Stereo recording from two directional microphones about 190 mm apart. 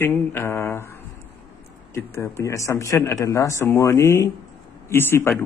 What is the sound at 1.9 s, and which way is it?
Speech, 15° left (ahead or behind).